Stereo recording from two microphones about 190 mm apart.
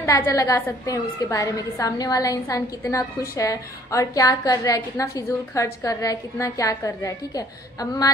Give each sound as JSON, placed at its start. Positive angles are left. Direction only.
{"t": 0.0, "sound": "a woman's voice", "side_deg": 15}